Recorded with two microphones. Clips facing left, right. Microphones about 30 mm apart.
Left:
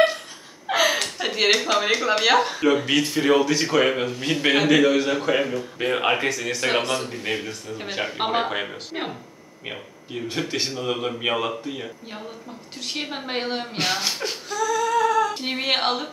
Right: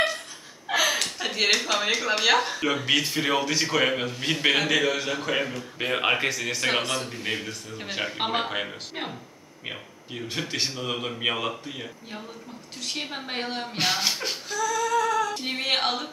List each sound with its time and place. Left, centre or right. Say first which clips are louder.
0.7 s a man's voice: left 3 dB; centre
13.7 s female singing: right 1 dB; centre